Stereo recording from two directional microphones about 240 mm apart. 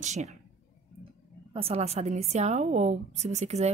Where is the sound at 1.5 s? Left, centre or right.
Right.